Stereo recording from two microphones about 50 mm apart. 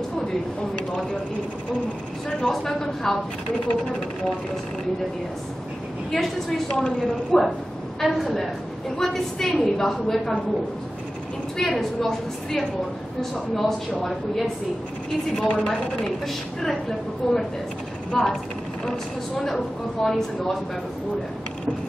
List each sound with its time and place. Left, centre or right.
2.2 s a woman's voice: centre
6.1 s speech: centre
6.8 s a woman's voice: centre
8.0 s a woman's voice: centre
11.5 s a woman's voice: centre
15.4 s a woman's voice: left
17.2 s a woman's voice: centre